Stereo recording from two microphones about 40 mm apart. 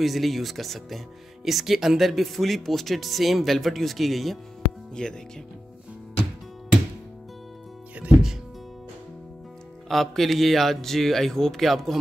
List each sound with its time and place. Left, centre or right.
0.0 s speech: centre
5.0 s speech: centre
9.8 s speech: centre